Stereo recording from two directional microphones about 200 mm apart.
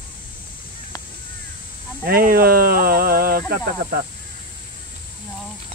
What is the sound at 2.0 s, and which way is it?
Speech, 50° right (ahead or behind).